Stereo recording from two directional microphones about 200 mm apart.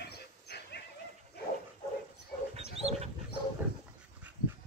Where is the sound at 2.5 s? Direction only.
30° right (ahead or behind).